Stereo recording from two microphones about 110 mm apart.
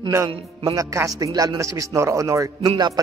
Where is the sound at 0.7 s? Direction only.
30° right (ahead or behind).